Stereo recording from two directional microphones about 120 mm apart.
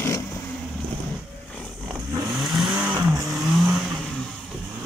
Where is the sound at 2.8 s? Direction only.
15° right (ahead or behind).